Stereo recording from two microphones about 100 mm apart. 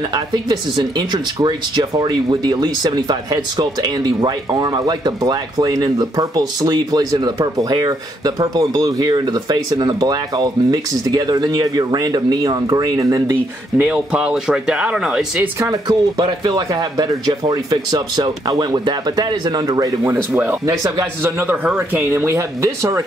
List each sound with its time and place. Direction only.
0.1 s speech: 45° right (ahead or behind)
13.7 s speech: 15° right (ahead or behind)
15.6 s speech: 40° right (ahead or behind)